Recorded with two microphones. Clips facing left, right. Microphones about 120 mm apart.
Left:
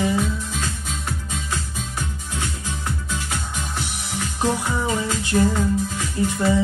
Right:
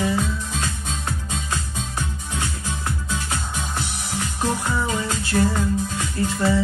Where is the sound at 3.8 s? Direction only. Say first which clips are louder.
Even; 15° left (ahead or behind).